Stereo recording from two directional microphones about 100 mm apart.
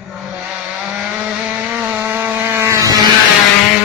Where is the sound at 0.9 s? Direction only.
10° right (ahead or behind); by 2.9 s 30° right (ahead or behind).